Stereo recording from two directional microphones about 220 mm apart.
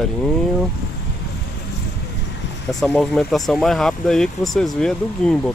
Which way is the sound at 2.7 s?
Centre (ahead or behind).